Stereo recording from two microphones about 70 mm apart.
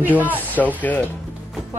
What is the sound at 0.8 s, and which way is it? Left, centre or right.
Speech, left.